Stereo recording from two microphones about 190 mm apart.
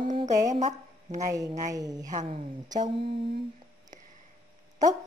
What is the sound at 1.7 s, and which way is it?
Speech, 20° right (ahead or behind).